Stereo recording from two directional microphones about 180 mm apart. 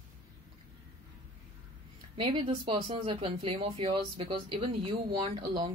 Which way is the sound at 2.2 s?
30° right (ahead or behind).